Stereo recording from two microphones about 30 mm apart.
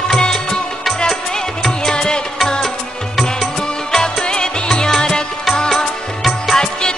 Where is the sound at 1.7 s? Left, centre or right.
Left.